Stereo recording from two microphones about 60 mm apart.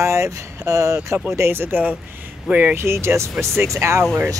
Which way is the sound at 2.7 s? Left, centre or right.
Right.